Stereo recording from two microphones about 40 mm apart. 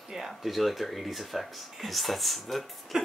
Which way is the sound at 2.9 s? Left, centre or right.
Centre.